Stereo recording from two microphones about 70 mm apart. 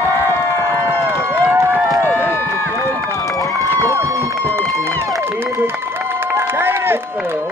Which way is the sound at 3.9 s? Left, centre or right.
Right.